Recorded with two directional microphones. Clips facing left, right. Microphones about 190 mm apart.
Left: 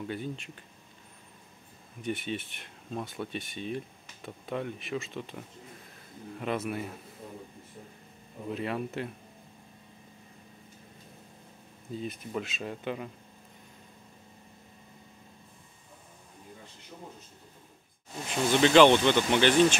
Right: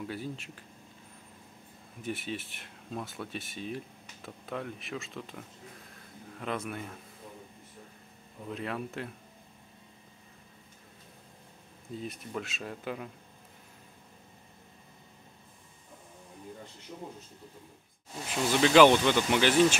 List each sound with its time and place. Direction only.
0.0 s speech: centre (ahead or behind)
2.0 s speech: centre (ahead or behind)
6.4 s speech: 5° left (ahead or behind)
8.5 s speech: centre (ahead or behind)
12.0 s speech: centre (ahead or behind)
18.5 s speech: 5° right (ahead or behind)